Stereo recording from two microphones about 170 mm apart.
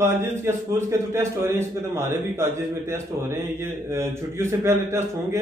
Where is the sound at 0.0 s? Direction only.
15° right (ahead or behind).